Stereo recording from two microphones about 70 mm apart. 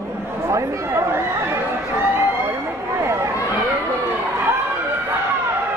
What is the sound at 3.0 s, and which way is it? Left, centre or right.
Chatter, right.